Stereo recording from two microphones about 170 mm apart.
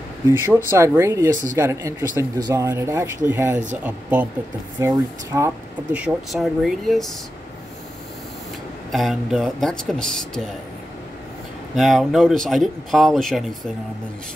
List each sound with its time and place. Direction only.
0.5 s speech: 15° right (ahead or behind)
5.9 s speech: 5° right (ahead or behind)
8.9 s speech: centre (ahead or behind)
11.7 s speech: centre (ahead or behind)